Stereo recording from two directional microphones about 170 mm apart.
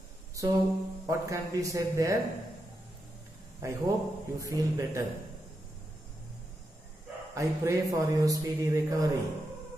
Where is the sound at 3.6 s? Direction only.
20° right (ahead or behind).